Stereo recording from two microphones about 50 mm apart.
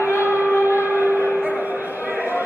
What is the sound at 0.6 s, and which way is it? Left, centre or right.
Music, right.